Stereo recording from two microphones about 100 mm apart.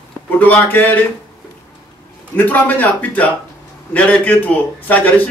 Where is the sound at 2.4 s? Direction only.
20° left (ahead or behind).